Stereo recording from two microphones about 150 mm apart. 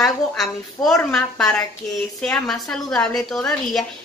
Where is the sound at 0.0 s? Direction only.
Centre (ahead or behind).